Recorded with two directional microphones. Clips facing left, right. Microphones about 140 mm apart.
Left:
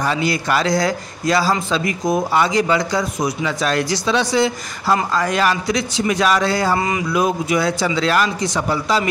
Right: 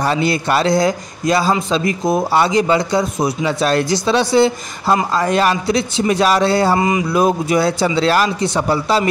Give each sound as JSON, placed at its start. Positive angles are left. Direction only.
{"t": 0.0, "sound": "a man's voice", "side_deg": -30}
{"t": 7.2, "sound": "a man's voice", "side_deg": -35}